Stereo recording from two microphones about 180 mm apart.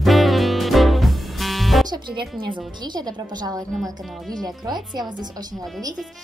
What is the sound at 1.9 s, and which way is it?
Speech, 25° right (ahead or behind).